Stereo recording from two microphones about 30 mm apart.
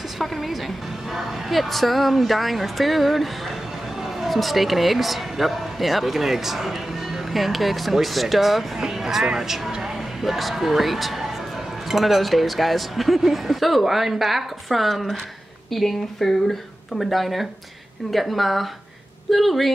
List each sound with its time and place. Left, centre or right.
0.2 s speech: centre
8.7 s speech: centre